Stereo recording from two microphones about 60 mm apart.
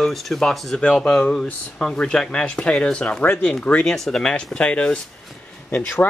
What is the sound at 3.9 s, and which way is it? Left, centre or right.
Speech, centre.